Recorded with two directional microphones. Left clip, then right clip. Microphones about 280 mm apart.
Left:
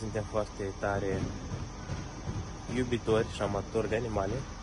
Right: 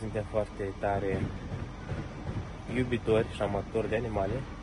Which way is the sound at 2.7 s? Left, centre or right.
Centre.